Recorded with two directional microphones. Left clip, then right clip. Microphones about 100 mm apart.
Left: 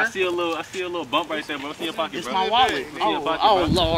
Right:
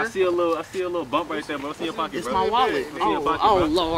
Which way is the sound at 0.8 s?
5° right (ahead or behind).